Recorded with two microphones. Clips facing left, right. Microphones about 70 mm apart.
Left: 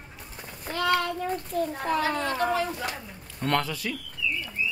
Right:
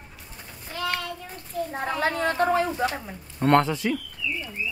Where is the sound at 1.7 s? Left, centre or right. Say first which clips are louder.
Right 3 dB; right.